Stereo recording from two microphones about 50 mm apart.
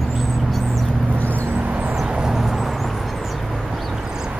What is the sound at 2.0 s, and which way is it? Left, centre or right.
Vehicle, centre.